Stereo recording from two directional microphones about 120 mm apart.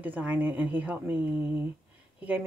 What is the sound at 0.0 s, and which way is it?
Speech, 15° right (ahead or behind).